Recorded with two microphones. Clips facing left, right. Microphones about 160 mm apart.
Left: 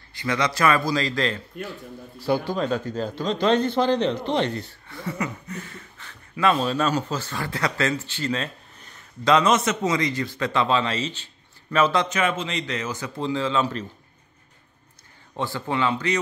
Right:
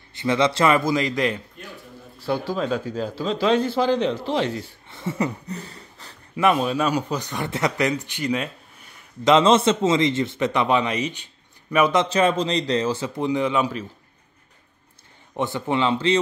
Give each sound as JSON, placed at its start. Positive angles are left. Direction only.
{"t": 0.1, "sound": "a man's voice", "side_deg": -25}
{"t": 2.2, "sound": "speech", "side_deg": 0}
{"t": 4.8, "sound": "speech", "side_deg": -25}
{"t": 6.3, "sound": "speech", "side_deg": -15}
{"t": 9.2, "sound": "a man's voice", "side_deg": -25}
{"t": 12.1, "sound": "a man's voice", "side_deg": -35}
{"t": 15.3, "sound": "a man's voice", "side_deg": -20}